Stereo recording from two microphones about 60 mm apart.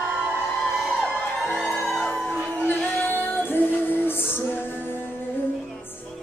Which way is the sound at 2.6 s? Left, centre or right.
Left.